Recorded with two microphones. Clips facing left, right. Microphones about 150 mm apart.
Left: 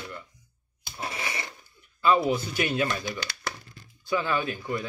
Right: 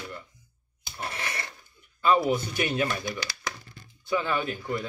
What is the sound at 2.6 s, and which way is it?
Speech, 25° right (ahead or behind).